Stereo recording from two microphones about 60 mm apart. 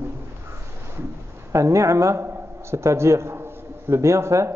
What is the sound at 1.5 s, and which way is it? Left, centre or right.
A man's voice, right.